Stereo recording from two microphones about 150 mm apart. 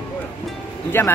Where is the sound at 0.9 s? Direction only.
15° left (ahead or behind).